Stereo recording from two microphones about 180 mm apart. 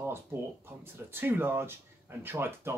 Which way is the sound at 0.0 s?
15° right (ahead or behind).